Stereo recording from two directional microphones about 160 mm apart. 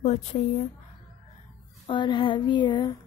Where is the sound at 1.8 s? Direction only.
30° left (ahead or behind).